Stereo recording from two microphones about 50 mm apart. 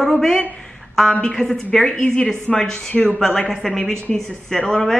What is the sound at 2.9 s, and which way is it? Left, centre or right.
Speech, left.